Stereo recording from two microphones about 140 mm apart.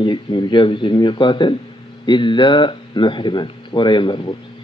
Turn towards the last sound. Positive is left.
turn(degrees=35)  # may be behind; listen again after turning